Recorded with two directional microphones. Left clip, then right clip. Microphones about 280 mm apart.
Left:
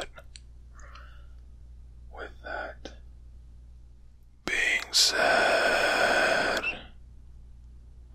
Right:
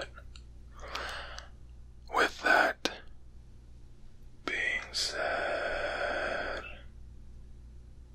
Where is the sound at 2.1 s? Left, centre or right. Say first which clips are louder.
Right 13 dB; right.